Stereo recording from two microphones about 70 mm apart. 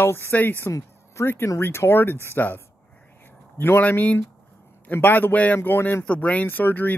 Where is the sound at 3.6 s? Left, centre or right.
Left.